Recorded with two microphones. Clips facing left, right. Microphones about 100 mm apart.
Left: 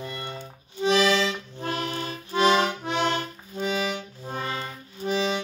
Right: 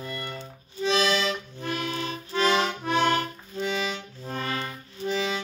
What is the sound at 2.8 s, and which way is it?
Accordion, 20° left (ahead or behind).